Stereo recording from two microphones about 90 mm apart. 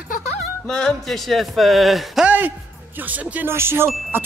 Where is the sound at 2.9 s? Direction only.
20° right (ahead or behind).